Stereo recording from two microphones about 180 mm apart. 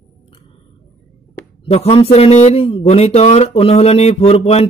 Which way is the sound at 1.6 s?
35° left (ahead or behind).